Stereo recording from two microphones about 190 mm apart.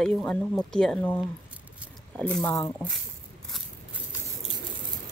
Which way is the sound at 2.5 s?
15° left (ahead or behind).